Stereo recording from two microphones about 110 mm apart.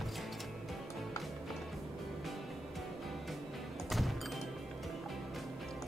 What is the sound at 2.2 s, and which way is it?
Music, centre (ahead or behind).